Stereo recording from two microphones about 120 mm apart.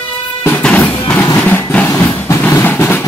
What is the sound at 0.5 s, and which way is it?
Music, 10° left (ahead or behind).